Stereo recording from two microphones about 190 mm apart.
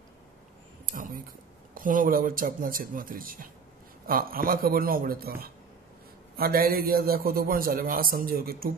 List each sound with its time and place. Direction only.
0.9 s a man's voice: 45° right (ahead or behind)